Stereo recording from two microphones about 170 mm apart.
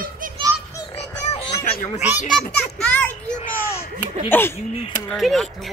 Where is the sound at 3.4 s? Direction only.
45° left (ahead or behind).